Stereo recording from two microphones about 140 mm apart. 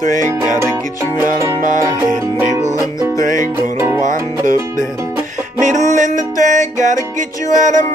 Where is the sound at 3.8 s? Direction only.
20° right (ahead or behind).